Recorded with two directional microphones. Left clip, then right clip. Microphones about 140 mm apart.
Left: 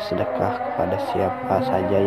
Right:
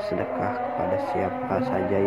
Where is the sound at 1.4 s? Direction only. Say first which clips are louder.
Left 4 dB; 20° left (ahead or behind).